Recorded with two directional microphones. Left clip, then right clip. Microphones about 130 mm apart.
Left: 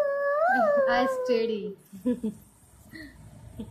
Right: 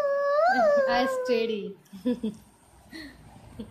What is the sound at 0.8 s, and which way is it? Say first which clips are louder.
A child's voice: left 1 dB; 30° right (ahead or behind).